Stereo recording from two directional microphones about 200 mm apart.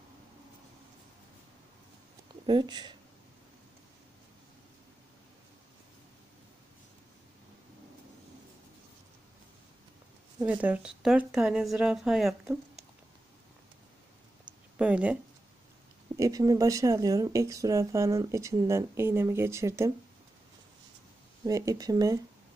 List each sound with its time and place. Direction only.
2.4 s speech: 20° right (ahead or behind)
10.4 s speech: 5° right (ahead or behind)
14.8 s speech: 5° right (ahead or behind)
16.2 s speech: 15° right (ahead or behind)
21.5 s speech: 15° right (ahead or behind)